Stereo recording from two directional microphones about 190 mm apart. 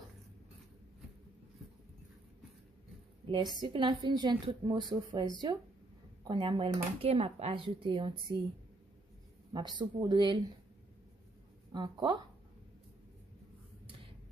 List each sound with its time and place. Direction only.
3.3 s a woman's voice: 25° right (ahead or behind)
9.5 s a woman's voice: 25° right (ahead or behind)
11.7 s a woman's voice: 25° right (ahead or behind)